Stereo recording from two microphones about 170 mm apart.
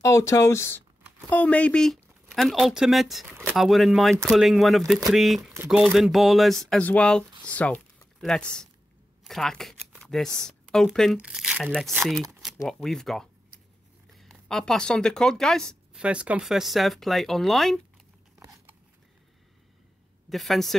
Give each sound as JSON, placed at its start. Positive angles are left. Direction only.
{"t": 0.0, "sound": "speech", "side_deg": 15}
{"t": 12.1, "sound": "a sound", "side_deg": 0}
{"t": 12.6, "sound": "speech", "side_deg": 0}
{"t": 14.3, "sound": "speech", "side_deg": 5}
{"t": 20.2, "sound": "speech", "side_deg": 0}